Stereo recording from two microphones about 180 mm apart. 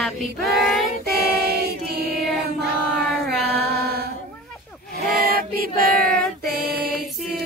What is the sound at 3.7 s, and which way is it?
Mantra, 60° right (ahead or behind).